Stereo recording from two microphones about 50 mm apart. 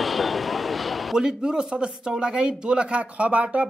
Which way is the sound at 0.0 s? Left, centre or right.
Centre.